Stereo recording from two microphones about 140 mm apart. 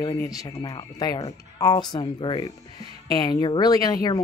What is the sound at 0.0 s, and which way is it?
Speech, 25° left (ahead or behind).